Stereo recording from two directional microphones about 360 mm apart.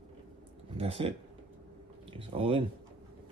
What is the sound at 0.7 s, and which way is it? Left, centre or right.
Speech, centre.